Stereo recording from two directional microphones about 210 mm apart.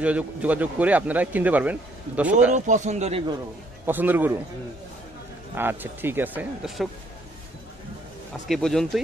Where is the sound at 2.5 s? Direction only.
35° right (ahead or behind).